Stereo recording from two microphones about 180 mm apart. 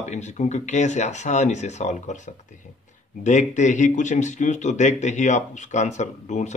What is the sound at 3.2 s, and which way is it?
Speech, 40° left (ahead or behind).